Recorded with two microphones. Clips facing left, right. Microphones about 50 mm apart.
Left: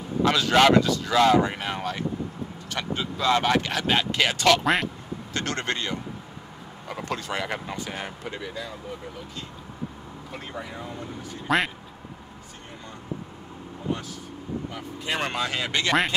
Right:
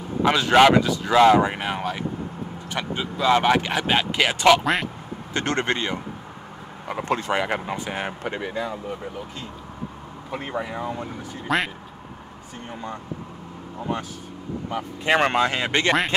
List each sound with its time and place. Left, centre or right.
0.2 s speech: centre
8.2 s speech: right
10.3 s speech: right
11.4 s speech: centre
14.7 s speech: right